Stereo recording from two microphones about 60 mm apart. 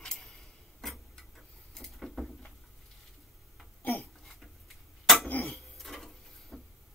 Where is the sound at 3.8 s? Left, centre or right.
Left.